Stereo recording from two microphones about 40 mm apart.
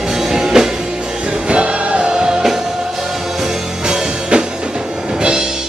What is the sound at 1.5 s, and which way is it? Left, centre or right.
Music, right.